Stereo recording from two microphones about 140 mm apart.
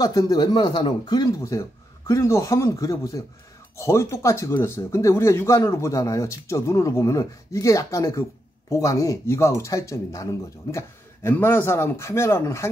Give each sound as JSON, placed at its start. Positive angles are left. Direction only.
{"t": 0.0, "sound": "speech", "side_deg": 25}